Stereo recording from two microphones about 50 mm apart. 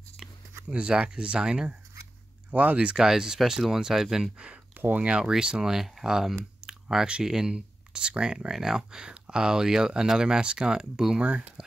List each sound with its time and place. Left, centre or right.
0.7 s speech: centre
2.5 s speech: right
3.0 s speech: centre
4.7 s speech: right
5.0 s speech: centre